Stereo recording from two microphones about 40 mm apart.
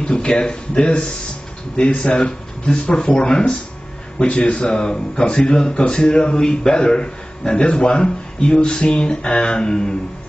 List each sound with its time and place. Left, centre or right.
0.0 s speech: left
2.0 s speech: left
3.2 s speech: left
4.7 s speech: centre
9.6 s a man's voice: centre